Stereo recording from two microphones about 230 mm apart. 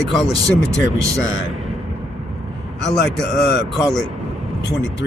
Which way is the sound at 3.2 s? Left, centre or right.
Centre.